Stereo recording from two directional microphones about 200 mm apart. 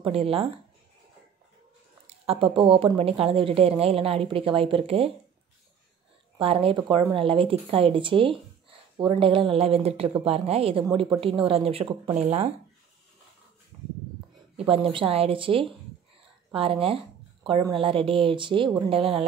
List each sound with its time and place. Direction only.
0.0 s speech: 30° right (ahead or behind)
2.0 s speech: 30° right (ahead or behind)
6.3 s speech: 25° right (ahead or behind)
13.7 s a sound: 30° right (ahead or behind)
14.6 s speech: 25° right (ahead or behind)